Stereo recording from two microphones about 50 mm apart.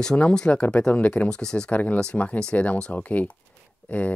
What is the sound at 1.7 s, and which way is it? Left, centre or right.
Speech, left.